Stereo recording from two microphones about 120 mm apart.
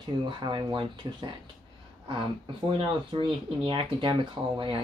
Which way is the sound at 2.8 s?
45° right (ahead or behind).